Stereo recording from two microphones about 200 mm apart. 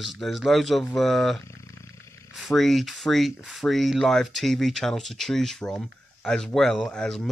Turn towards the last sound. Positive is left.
turn(degrees=0)  # may be behind; listen again after turning